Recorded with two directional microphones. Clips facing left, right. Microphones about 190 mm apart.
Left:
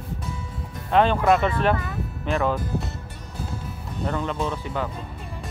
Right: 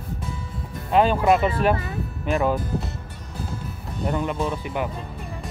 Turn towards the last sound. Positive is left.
turn(degrees=-15)  # may be behind; listen again after turning